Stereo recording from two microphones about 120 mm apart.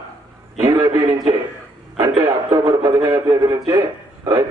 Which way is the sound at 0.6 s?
30° right (ahead or behind).